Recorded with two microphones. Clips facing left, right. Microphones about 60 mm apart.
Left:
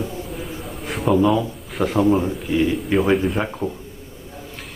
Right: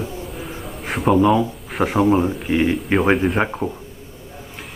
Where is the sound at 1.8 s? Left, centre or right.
Right.